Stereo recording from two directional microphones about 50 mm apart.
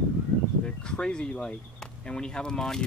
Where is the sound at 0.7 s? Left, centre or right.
Centre.